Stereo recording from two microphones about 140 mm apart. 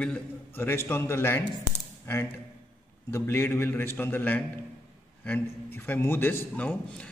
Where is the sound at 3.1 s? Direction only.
15° left (ahead or behind).